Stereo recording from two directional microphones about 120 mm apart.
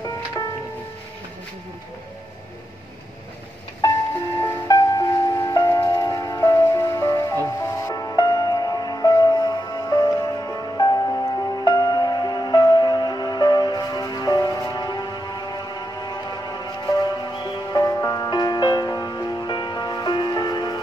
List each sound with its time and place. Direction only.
4.4 s music: 30° left (ahead or behind)